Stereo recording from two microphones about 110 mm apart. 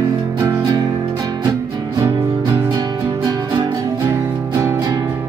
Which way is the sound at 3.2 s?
35° right (ahead or behind).